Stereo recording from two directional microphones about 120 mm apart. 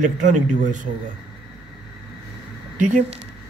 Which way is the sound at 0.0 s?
90° right.